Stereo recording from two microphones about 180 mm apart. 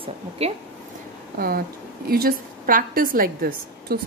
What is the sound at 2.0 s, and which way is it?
Speech, 55° right (ahead or behind).